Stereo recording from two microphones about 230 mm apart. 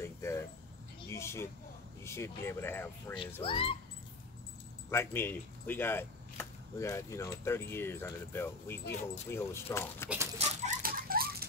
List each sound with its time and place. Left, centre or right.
0.0 s a sound: centre
1.0 s vehicle: centre
2.0 s speech: centre
3.4 s a child's voice: left
4.9 s speech: centre
10.0 s dog: centre
10.4 s a sound: right